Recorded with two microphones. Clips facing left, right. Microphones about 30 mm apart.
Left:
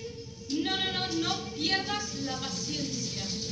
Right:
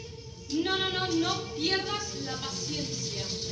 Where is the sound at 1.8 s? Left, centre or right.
Centre.